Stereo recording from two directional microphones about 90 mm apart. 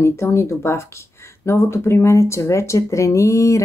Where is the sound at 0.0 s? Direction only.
30° left (ahead or behind).